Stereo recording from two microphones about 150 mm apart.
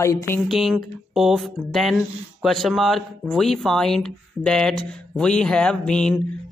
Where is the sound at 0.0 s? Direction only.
20° left (ahead or behind).